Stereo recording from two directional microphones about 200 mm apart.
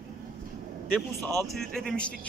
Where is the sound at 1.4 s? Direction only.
Centre (ahead or behind).